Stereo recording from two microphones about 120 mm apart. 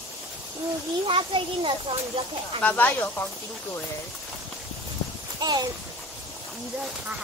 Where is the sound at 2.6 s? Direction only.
15° left (ahead or behind).